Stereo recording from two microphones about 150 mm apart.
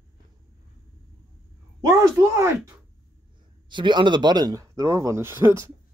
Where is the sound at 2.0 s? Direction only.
20° right (ahead or behind).